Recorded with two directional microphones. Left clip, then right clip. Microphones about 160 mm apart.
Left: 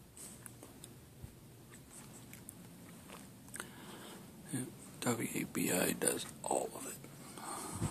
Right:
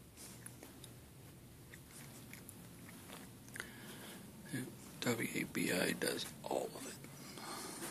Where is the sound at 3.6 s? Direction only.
15° left (ahead or behind).